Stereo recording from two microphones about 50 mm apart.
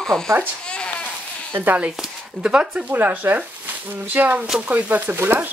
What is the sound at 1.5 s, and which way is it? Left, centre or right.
Speech, right.